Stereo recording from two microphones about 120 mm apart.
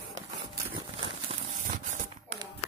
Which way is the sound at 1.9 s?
90° right.